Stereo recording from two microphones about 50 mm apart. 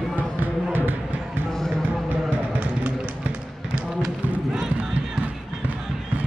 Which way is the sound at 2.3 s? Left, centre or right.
Right.